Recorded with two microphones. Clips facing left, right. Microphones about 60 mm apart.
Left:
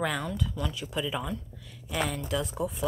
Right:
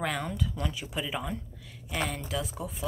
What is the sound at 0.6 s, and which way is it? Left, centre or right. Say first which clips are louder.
Speech: left 2 dB; centre.